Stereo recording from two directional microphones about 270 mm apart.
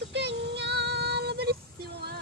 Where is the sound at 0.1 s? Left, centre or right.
Right.